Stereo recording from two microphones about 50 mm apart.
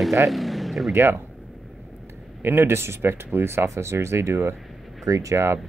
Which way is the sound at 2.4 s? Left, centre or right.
Right.